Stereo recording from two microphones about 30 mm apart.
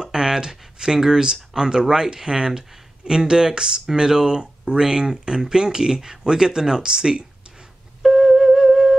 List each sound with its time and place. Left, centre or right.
0.0 s speech: right
8.0 s flute: centre